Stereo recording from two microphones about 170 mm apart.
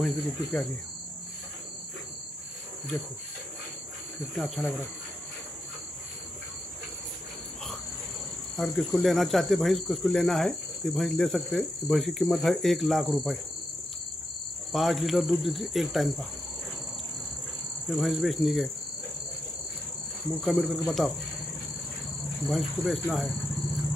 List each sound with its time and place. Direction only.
0.0 s speech: 10° left (ahead or behind)
4.4 s speech: centre (ahead or behind)
8.5 s speech: centre (ahead or behind)
14.7 s speech: centre (ahead or behind)
17.9 s speech: centre (ahead or behind)
20.4 s speech: centre (ahead or behind)
22.5 s speech: centre (ahead or behind)